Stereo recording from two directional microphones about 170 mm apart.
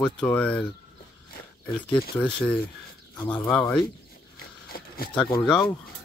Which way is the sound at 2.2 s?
5° left (ahead or behind).